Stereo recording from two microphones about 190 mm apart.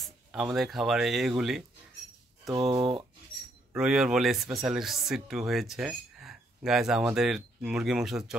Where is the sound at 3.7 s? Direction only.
5° right (ahead or behind).